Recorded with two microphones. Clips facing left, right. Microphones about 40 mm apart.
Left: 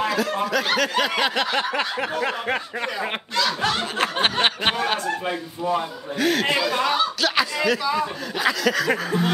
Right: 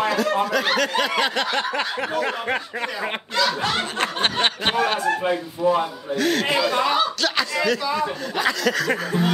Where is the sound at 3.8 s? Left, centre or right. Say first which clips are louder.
Left 1 dB; centre.